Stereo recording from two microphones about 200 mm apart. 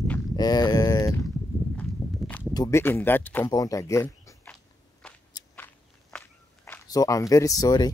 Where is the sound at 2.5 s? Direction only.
15° left (ahead or behind).